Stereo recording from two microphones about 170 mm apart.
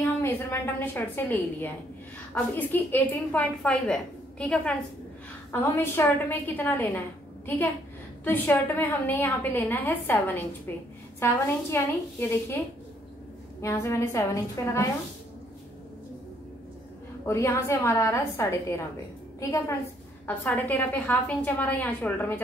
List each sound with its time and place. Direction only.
0.0 s a woman's voice: 15° left (ahead or behind)
13.6 s a woman's voice: 15° left (ahead or behind)
17.3 s a woman's voice: 15° left (ahead or behind)
20.2 s a woman's voice: 10° left (ahead or behind)